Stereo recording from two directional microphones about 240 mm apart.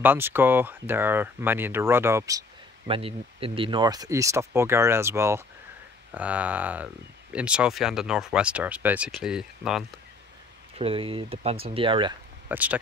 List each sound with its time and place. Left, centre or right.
0.0 s speech: centre
2.9 s speech: right; by 9.8 s centre
10.8 s speech: right
12.4 s speech: centre